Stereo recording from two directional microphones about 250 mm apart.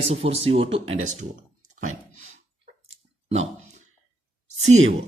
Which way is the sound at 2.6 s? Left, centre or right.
Right.